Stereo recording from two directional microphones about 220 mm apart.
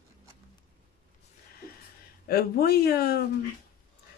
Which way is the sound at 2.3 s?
45° left (ahead or behind).